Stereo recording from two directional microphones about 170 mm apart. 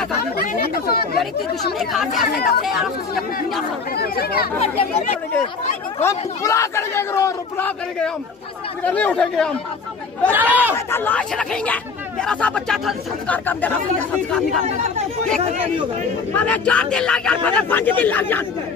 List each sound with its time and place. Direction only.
0.4 s speech: 65° left (ahead or behind)
1.5 s speech: centre (ahead or behind)
3.9 s speech: 65° left (ahead or behind)
6.0 s speech: 20° left (ahead or behind)
10.3 s speech: 10° right (ahead or behind)
10.7 s speech: 10° left (ahead or behind)
16.3 s speech: 10° left (ahead or behind)